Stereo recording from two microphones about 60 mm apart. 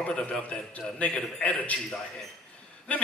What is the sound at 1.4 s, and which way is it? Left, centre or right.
Speech, left.